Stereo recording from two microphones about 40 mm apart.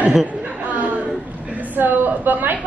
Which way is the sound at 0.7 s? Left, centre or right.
Right.